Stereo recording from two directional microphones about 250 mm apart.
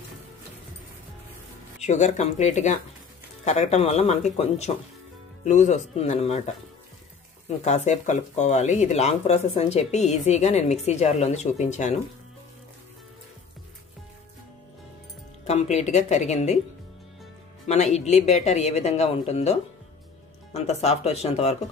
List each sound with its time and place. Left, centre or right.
1.8 s speech: left
15.4 s speech: left
17.9 s speech: left